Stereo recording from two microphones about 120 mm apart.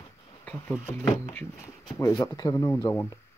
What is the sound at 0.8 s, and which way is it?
Speech, 20° left (ahead or behind).